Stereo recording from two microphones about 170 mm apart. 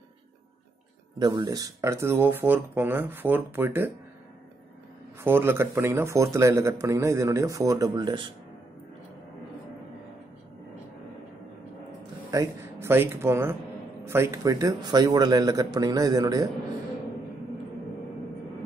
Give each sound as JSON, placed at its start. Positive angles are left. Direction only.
{"t": 1.2, "sound": "speech", "side_deg": -25}
{"t": 5.2, "sound": "speech", "side_deg": -15}
{"t": 12.3, "sound": "a man's voice", "side_deg": -15}